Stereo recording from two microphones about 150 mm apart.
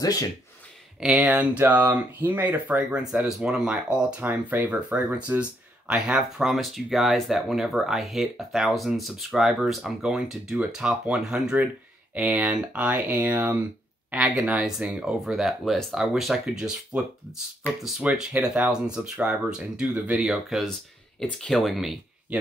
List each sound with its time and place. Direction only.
0.0 s speech: 25° left (ahead or behind)
0.9 s speech: 5° right (ahead or behind)